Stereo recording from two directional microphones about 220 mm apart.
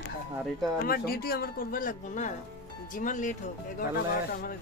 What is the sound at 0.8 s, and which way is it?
Speech, 45° left (ahead or behind).